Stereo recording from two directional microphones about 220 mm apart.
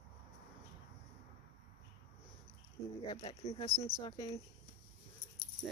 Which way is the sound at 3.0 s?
20° left (ahead or behind).